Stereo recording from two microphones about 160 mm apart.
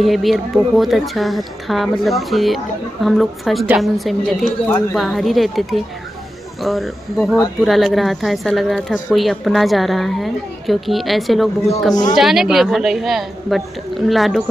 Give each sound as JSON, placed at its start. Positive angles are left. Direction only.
{"t": 0.0, "sound": "a woman's voice", "side_deg": 0}
{"t": 11.9, "sound": "speech", "side_deg": 25}
{"t": 12.2, "sound": "a woman's voice", "side_deg": 0}